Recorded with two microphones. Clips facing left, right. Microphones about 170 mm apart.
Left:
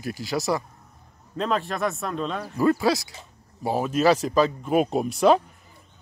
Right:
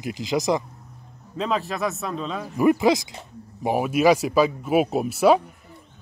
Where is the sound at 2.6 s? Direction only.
15° right (ahead or behind).